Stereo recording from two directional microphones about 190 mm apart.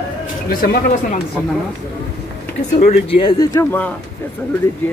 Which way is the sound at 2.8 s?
30° left (ahead or behind).